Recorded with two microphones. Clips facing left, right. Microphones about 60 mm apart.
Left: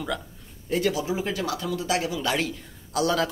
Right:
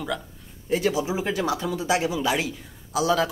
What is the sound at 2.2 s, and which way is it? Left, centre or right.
A man's voice, centre.